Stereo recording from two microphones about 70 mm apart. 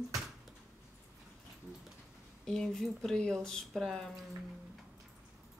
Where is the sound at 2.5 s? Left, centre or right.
Centre.